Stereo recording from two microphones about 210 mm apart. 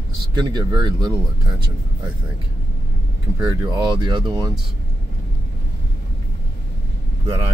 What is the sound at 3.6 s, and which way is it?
Speech, 20° right (ahead or behind).